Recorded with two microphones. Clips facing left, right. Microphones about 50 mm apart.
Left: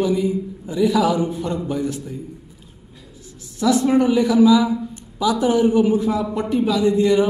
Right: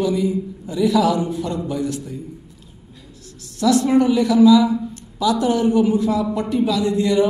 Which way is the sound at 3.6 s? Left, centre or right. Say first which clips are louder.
Right 1 dB; centre.